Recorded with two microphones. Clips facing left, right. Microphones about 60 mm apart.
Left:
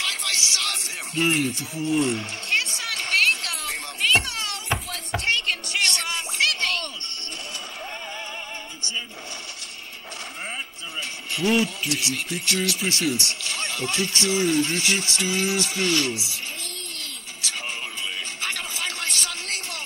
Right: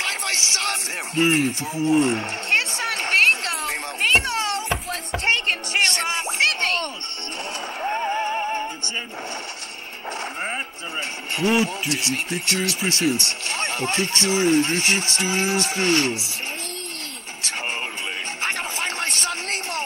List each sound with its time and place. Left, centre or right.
0.0 s music: right
1.2 s speech: right
1.9 s a sound: right
7.8 s music: right
11.3 s speech: right
11.9 s speech: right
18.4 s a sound: right